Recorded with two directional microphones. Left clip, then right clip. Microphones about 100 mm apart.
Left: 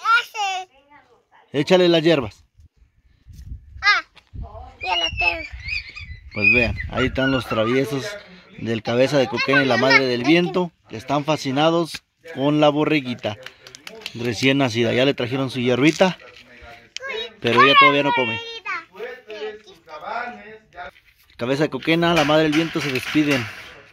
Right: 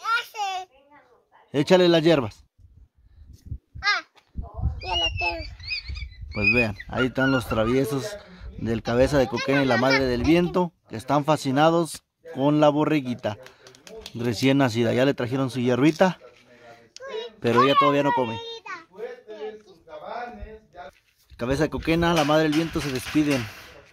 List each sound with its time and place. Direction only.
0.0 s a sound: 20° right (ahead or behind)
1.5 s speech: centre (ahead or behind)
3.8 s babbling: 25° right (ahead or behind)
4.9 s a sound: 55° right (ahead or behind)
5.9 s speech: 5° right (ahead or behind)
17.0 s a child's voice: 10° right (ahead or behind)
21.4 s speech: 10° left (ahead or behind)